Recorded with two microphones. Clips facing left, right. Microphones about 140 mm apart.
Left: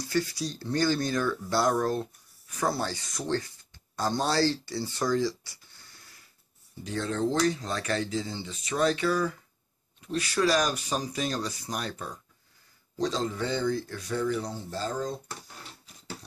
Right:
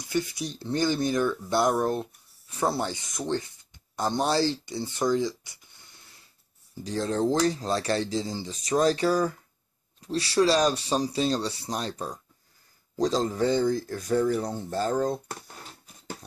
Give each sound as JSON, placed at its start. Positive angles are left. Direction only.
{"t": 0.0, "sound": "speech", "side_deg": -20}
{"t": 6.8, "sound": "speech", "side_deg": -35}